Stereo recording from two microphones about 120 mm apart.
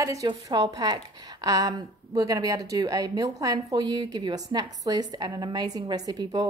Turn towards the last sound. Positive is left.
turn(degrees=-35)  # may be behind; listen again after turning